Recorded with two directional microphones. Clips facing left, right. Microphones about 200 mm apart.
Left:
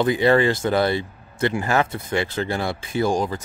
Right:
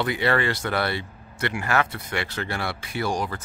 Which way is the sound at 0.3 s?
25° left (ahead or behind).